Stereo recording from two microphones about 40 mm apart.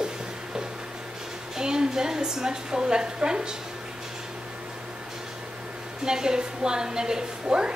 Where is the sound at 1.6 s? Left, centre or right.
Centre.